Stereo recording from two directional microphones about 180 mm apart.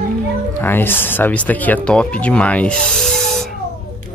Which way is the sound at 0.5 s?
10° left (ahead or behind).